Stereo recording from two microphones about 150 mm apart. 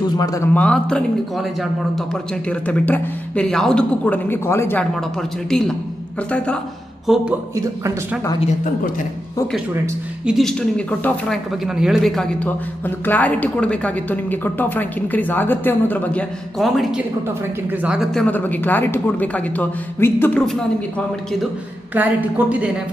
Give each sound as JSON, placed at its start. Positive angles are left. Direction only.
{"t": 0.0, "sound": "speech", "side_deg": 25}
{"t": 0.5, "sound": "a man's voice", "side_deg": 10}
{"t": 5.5, "sound": "a man's voice", "side_deg": 5}
{"t": 7.5, "sound": "speech", "side_deg": -20}
{"t": 10.2, "sound": "a man's voice", "side_deg": 0}
{"t": 10.9, "sound": "a man's voice", "side_deg": 10}
{"t": 11.6, "sound": "a man's voice", "side_deg": 0}
{"t": 18.2, "sound": "a man's voice", "side_deg": 10}
{"t": 21.9, "sound": "a woman's voice", "side_deg": -10}